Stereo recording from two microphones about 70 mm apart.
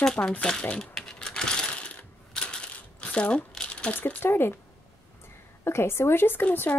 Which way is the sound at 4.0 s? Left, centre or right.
Left.